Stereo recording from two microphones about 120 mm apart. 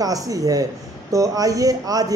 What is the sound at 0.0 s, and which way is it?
A man's voice, 30° right (ahead or behind).